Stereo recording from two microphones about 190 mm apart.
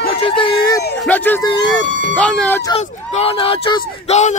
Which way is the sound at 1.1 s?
10° left (ahead or behind).